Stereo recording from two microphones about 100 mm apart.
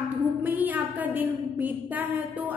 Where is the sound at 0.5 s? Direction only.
15° right (ahead or behind).